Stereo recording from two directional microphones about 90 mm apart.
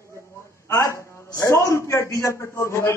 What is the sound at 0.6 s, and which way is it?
A man's voice, 35° left (ahead or behind).